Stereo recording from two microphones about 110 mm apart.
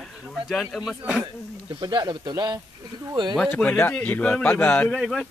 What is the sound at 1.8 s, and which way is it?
Speech, 40° right (ahead or behind).